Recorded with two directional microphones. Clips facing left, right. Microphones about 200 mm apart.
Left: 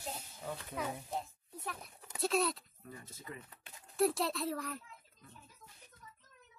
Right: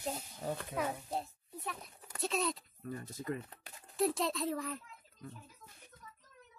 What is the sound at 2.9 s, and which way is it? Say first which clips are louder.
Speech: right 9 dB; 50° right (ahead or behind).